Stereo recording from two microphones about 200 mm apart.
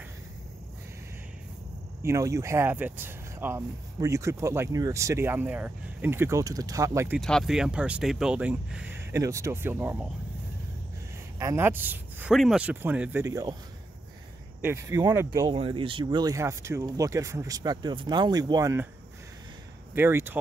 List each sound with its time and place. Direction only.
2.0 s speech: 15° right (ahead or behind)
7.2 s speech: centre (ahead or behind)
11.3 s speech: 15° right (ahead or behind)
14.6 s speech: 10° right (ahead or behind)
19.9 s speech: 10° right (ahead or behind)